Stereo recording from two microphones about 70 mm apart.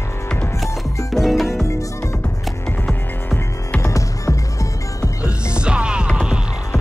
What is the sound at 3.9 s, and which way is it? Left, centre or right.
Music, left.